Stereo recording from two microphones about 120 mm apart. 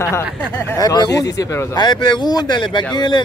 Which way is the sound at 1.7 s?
40° left (ahead or behind).